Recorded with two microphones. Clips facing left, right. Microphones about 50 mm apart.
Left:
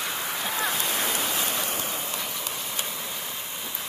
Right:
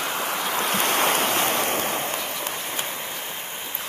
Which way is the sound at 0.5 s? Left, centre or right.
Right.